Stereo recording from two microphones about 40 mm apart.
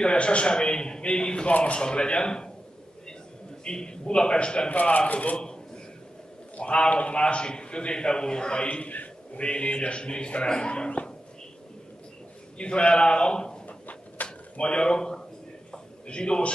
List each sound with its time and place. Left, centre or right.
0.0 s a sound: left
1.6 s a man's voice: left
3.6 s a man's voice: left
4.6 s speech: left
6.5 s a man's voice: left
8.6 s a man's voice: left
12.5 s a man's voice: left
13.7 s a sound: left
14.6 s a man's voice: left
15.7 s a sound: left